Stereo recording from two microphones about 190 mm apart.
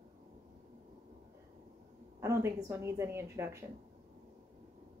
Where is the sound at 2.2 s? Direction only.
15° right (ahead or behind).